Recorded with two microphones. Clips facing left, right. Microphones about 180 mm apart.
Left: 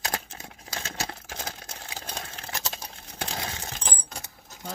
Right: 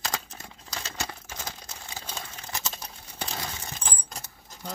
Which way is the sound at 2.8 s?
10° left (ahead or behind).